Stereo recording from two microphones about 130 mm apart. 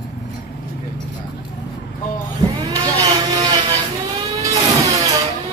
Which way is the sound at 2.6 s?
30° right (ahead or behind).